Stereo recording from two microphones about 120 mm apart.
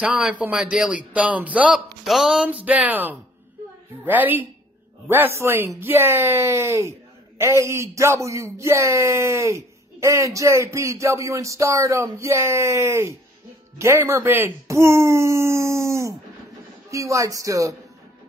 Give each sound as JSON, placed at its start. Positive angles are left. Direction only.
{"t": 0.0, "sound": "a man's voice", "side_deg": -10}